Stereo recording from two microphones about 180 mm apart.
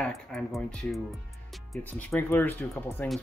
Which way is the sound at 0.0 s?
Centre (ahead or behind).